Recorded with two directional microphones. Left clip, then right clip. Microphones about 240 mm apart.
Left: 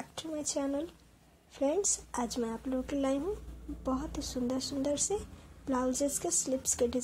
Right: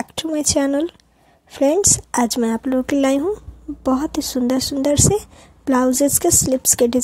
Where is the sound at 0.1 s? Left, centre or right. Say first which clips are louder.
Right 16 dB; right.